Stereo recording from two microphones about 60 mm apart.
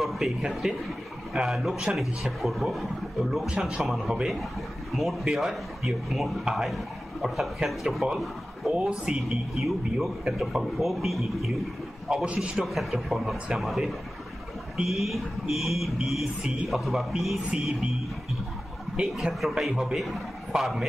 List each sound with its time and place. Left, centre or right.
0.0 s speech: centre
3.4 s a man's voice: centre
4.9 s a man's voice: centre
12.3 s a man's voice: centre
12.6 s speech: centre
18.9 s a man's voice: centre